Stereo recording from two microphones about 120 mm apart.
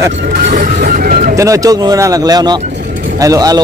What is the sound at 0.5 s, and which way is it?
Speech, 90° right.